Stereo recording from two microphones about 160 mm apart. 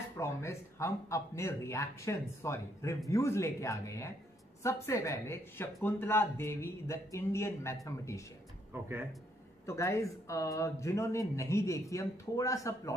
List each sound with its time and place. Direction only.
0.2 s speech: 15° left (ahead or behind)
9.7 s speech: 15° left (ahead or behind)